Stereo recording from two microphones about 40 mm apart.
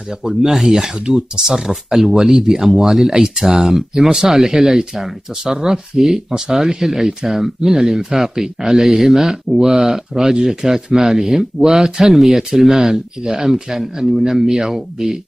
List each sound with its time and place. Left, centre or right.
0.2 s speech: centre